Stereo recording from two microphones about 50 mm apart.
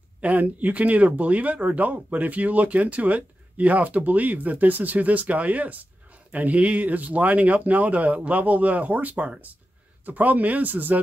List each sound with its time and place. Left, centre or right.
0.2 s speech: right